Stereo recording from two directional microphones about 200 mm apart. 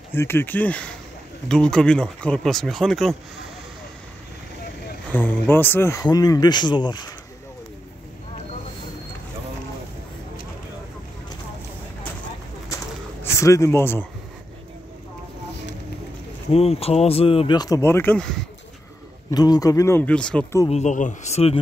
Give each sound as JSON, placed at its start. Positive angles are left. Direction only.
{"t": 0.1, "sound": "speech", "side_deg": 10}
{"t": 5.1, "sound": "speech", "side_deg": 10}
{"t": 13.2, "sound": "speech", "side_deg": 15}
{"t": 16.5, "sound": "speech", "side_deg": 30}
{"t": 19.3, "sound": "speech", "side_deg": 20}
{"t": 20.7, "sound": "speech", "side_deg": 35}